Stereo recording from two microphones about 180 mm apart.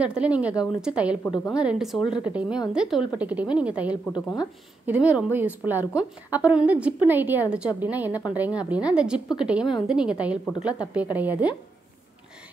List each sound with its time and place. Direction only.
0.0 s a woman's voice: 5° right (ahead or behind)
4.1 s speech: 25° left (ahead or behind)
4.8 s a woman's voice: 5° right (ahead or behind)